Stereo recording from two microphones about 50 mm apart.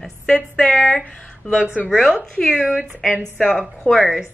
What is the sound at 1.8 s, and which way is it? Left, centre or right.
Speech, centre.